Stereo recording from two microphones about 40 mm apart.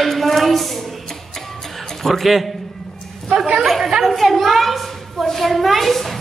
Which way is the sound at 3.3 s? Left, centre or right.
Centre.